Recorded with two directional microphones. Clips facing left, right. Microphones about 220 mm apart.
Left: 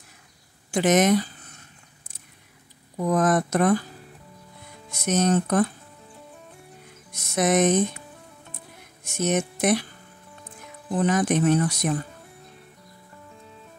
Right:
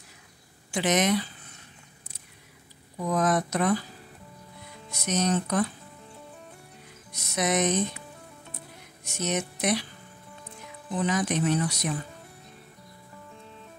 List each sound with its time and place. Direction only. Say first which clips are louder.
0.7 s speech: left 5 dB; 50° left (ahead or behind)
3.1 s speech: left 4 dB; 50° left (ahead or behind)
4.9 s speech: left 5 dB; 50° left (ahead or behind)
7.1 s speech: left 5 dB; 50° left (ahead or behind)
9.0 s speech: left 6 dB; 50° left (ahead or behind)
11.0 s speech: left 5 dB; 50° left (ahead or behind)